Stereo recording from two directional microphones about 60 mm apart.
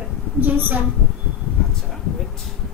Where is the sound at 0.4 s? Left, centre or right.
Right.